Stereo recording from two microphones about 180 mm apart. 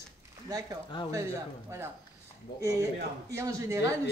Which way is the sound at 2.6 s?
15° right (ahead or behind).